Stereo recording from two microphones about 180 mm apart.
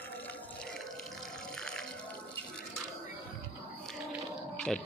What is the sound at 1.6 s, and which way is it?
Drip, 5° left (ahead or behind).